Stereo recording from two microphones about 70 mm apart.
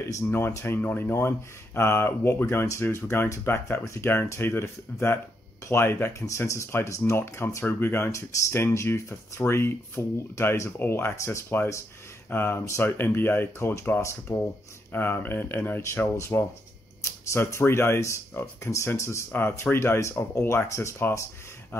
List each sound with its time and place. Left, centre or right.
0.3 s speech: left
0.7 s speech: left